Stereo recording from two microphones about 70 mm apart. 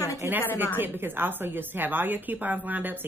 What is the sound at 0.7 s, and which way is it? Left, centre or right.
A woman's voice, right.